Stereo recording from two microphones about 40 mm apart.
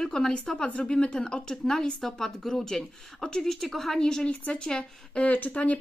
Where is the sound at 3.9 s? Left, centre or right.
Centre.